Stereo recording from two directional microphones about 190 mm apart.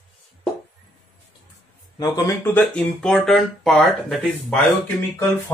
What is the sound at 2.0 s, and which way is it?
Speech, 15° left (ahead or behind).